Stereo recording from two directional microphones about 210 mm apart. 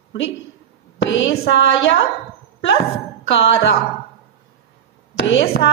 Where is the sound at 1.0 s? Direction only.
60° left (ahead or behind).